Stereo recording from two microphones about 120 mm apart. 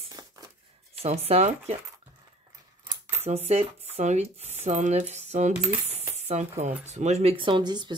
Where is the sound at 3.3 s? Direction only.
65° right (ahead or behind).